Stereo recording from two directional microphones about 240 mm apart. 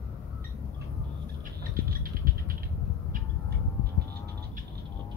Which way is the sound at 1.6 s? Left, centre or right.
Right.